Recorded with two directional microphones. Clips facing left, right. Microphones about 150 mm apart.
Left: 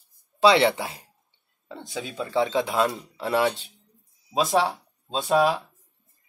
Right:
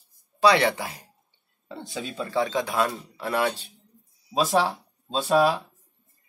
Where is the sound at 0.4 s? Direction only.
25° left (ahead or behind).